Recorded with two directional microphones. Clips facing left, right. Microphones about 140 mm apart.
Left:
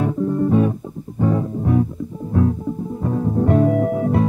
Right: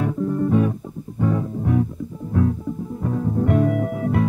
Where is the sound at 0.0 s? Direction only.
30° left (ahead or behind).